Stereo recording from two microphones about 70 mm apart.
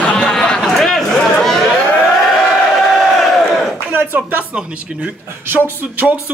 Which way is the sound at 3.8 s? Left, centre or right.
Right.